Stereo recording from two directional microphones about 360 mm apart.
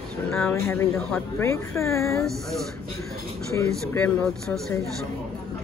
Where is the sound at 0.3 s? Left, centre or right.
Centre.